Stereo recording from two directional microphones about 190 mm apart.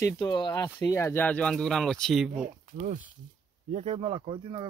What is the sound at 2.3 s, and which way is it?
Speech, 40° right (ahead or behind).